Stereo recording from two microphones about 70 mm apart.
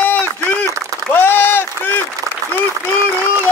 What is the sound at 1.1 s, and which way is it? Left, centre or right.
Applause, left.